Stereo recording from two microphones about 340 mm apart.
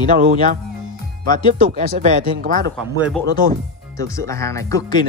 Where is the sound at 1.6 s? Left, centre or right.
Right.